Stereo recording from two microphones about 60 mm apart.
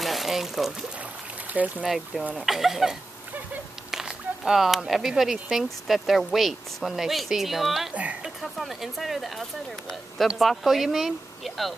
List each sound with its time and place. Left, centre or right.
0.0 s a sound: centre
1.5 s speech: right
1.9 s speech: centre
7.9 s speech: right
8.4 s speech: centre